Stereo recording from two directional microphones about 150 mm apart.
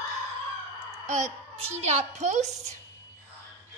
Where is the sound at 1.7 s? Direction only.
50° right (ahead or behind).